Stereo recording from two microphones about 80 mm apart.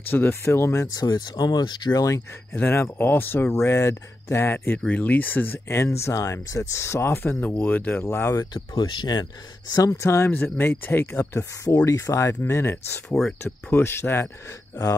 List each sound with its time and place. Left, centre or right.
0.1 s speech: left
0.9 s speech: left
2.0 s speech: left
2.5 s speech: left
3.5 s speech: left
4.7 s speech: centre; by 8.6 s left
8.7 s speech: left
10.0 s speech: left
11.6 s speech: left